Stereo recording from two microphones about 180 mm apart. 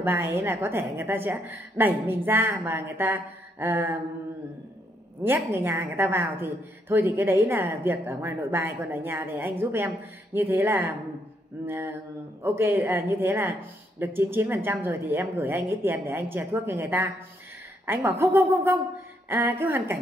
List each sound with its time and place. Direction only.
0.0 s a woman's voice: 10° right (ahead or behind)
5.2 s a woman's voice: 10° right (ahead or behind)